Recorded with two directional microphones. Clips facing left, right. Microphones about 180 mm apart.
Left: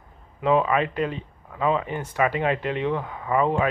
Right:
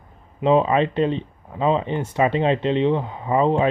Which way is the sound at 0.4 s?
25° right (ahead or behind).